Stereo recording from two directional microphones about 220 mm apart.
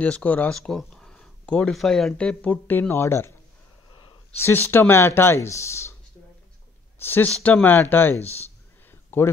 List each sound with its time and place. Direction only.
0.0 s speech: 5° left (ahead or behind)
4.4 s speech: 10° left (ahead or behind)
7.0 s speech: 10° left (ahead or behind)